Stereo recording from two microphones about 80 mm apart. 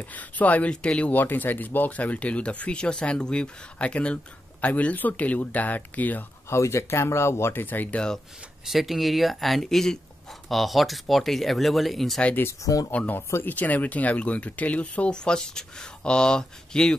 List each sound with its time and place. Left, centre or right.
0.0 s speech: centre
6.5 s speech: left
8.6 s speech: centre
12.2 s speech: centre
12.6 s speech: left
12.9 s speech: centre